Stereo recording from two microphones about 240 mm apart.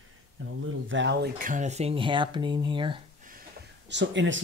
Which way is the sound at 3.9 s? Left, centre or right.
Right.